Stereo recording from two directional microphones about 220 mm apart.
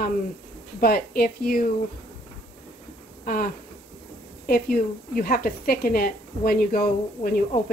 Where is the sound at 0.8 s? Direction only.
40° left (ahead or behind).